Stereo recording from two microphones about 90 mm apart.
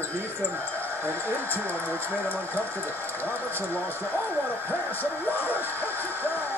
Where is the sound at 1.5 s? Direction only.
20° left (ahead or behind).